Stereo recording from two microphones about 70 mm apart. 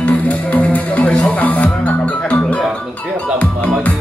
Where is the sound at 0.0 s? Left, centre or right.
Left.